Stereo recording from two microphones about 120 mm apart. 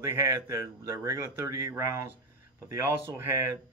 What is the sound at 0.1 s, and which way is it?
Speech, 25° right (ahead or behind).